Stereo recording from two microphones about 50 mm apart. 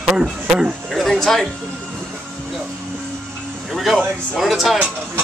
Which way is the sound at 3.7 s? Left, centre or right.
Centre.